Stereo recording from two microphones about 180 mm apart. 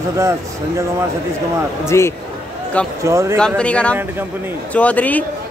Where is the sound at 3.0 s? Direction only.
15° right (ahead or behind).